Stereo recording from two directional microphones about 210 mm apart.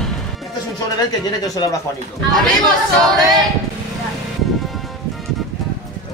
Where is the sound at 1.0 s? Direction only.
20° left (ahead or behind).